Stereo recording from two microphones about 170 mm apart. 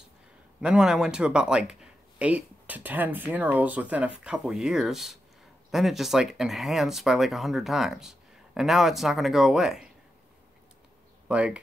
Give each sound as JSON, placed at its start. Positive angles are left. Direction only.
{"t": 0.6, "sound": "speech", "side_deg": -5}
{"t": 11.2, "sound": "speech", "side_deg": -5}